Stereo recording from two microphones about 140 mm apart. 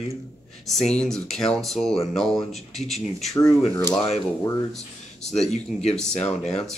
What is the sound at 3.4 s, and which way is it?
Speech, 20° left (ahead or behind).